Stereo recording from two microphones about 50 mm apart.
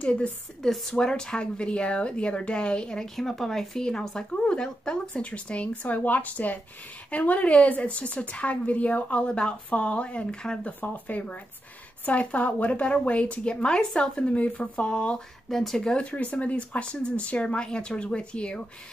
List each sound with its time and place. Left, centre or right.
0.0 s a woman's voice: left
0.6 s a woman's voice: centre
3.2 s a woman's voice: centre
10.8 s a woman's voice: left
15.5 s speech: centre
16.0 s a woman's voice: left